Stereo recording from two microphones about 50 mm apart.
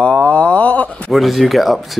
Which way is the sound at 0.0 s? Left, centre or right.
Left.